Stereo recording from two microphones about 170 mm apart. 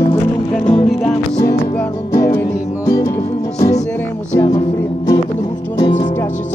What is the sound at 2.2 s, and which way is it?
Music, 15° left (ahead or behind).